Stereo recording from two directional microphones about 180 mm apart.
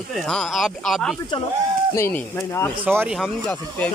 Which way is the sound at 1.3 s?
30° left (ahead or behind).